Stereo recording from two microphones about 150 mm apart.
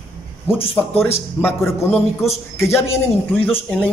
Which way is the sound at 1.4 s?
15° left (ahead or behind).